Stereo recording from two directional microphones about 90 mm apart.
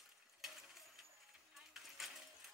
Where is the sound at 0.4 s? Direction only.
5° right (ahead or behind).